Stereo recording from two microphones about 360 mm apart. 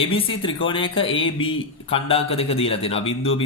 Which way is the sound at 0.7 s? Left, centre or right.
Centre.